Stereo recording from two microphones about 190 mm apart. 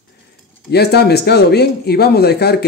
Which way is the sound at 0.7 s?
60° left (ahead or behind).